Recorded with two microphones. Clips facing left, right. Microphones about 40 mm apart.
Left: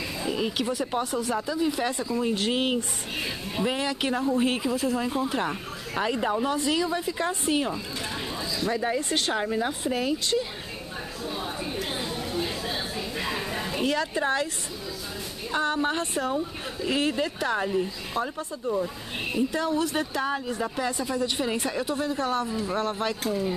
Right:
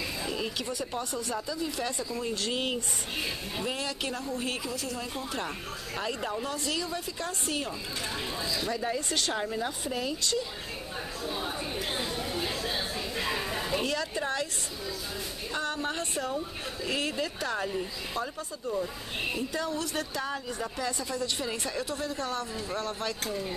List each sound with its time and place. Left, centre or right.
1.3 s speech: left
8.7 s speech: left
9.1 s speech: left
11.2 s chatter: centre
14.2 s speech: left
15.5 s speech: left
16.3 s speech: centre
19.6 s speech: centre
23.2 s speech: centre